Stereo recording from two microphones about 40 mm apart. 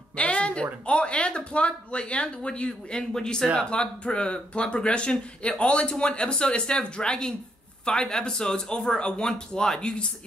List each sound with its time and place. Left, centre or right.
0.1 s speech: left
3.1 s speech: centre